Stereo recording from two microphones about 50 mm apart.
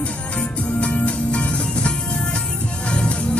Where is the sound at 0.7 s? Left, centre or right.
Left.